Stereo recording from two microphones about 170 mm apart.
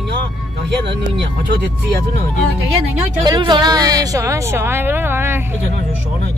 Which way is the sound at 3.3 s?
25° right (ahead or behind).